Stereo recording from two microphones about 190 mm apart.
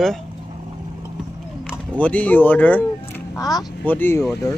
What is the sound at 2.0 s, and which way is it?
Speech, 10° left (ahead or behind).